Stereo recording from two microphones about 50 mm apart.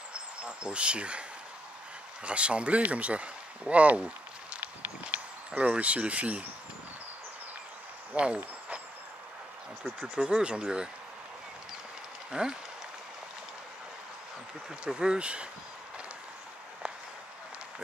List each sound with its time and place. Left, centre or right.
0.4 s speech: right
2.2 s speech: right
5.1 s speech: right
8.1 s speech: right
10.1 s speech: centre
12.3 s speech: centre
14.9 s speech: centre